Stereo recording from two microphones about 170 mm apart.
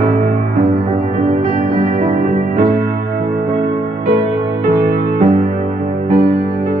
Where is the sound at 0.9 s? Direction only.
35° right (ahead or behind).